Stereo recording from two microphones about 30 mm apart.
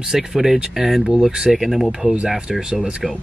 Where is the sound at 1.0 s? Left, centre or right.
Right.